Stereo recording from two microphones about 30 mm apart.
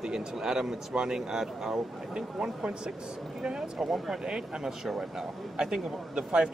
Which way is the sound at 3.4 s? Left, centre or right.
Right.